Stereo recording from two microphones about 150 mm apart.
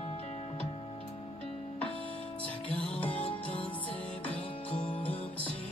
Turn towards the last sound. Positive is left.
turn(degrees=35)  # may be behind; listen again after turning